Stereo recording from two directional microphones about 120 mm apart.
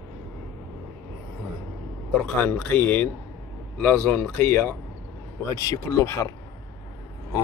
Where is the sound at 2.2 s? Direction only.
10° left (ahead or behind).